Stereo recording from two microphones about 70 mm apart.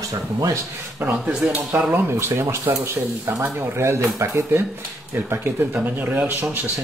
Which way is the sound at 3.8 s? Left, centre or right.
Right.